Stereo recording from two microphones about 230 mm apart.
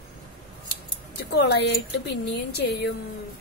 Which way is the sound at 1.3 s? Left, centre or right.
Left.